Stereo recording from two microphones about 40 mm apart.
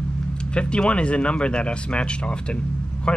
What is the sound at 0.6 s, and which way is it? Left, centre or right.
Speech, left.